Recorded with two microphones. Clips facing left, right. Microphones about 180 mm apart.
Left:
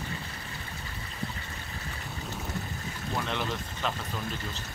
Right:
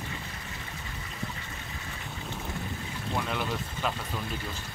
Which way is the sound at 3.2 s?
5° right (ahead or behind).